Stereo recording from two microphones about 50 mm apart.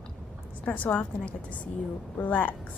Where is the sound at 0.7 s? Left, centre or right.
Left.